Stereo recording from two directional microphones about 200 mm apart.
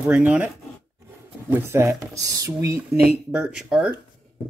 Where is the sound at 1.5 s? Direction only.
10° right (ahead or behind).